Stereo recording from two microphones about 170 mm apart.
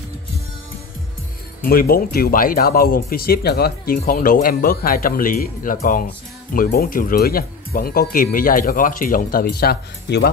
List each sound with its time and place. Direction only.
1.6 s speech: 60° left (ahead or behind)